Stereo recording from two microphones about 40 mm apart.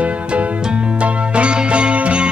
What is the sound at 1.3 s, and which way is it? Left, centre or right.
Music, right.